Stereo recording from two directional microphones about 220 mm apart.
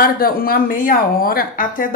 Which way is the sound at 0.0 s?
40° left (ahead or behind).